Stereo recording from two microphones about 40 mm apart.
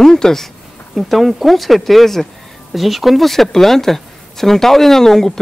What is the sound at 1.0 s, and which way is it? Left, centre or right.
Speech, centre.